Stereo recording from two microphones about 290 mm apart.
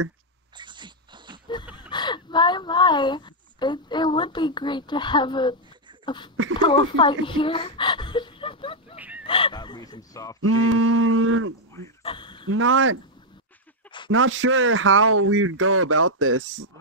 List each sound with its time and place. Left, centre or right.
0.6 s dog: centre
1.9 s a woman's voice: centre
8.9 s honk: centre
9.2 s speech: centre
10.4 s a man's voice: right
12.0 s a sound: centre
12.4 s a man's voice: right
14.1 s a man's voice: right